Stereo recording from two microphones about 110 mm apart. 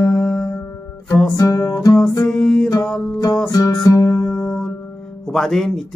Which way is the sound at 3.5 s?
35° left (ahead or behind).